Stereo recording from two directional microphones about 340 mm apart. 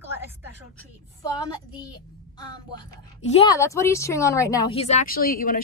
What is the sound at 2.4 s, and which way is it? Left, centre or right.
A woman's voice, centre.